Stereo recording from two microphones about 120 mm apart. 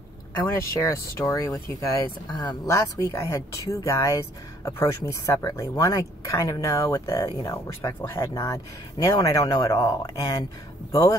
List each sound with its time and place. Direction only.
0.4 s speech: 25° left (ahead or behind)